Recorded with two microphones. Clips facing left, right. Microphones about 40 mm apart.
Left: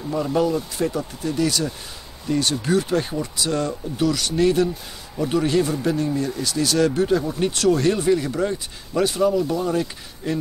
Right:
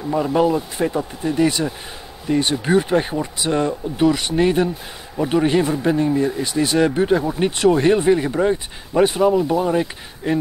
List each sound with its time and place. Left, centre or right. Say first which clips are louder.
0.1 s speech: right 4 dB; right